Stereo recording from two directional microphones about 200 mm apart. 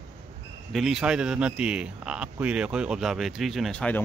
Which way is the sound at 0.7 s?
Centre (ahead or behind).